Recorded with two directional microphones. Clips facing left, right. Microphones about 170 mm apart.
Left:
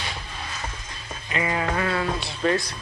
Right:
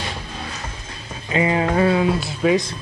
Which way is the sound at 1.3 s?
25° right (ahead or behind).